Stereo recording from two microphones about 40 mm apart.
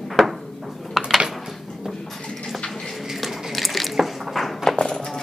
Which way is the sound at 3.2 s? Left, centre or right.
Centre.